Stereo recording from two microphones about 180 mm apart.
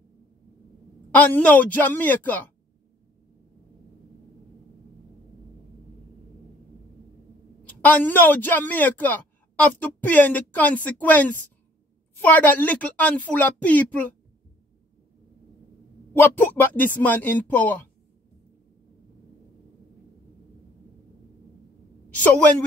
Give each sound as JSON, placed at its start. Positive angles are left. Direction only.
{"t": 1.1, "sound": "a man's voice", "side_deg": 10}
{"t": 7.6, "sound": "a man's voice", "side_deg": 10}
{"t": 16.1, "sound": "a man's voice", "side_deg": 10}
{"t": 22.1, "sound": "a woman's voice", "side_deg": 10}